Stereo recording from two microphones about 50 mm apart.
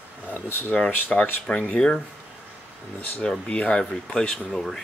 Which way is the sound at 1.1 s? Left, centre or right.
Left.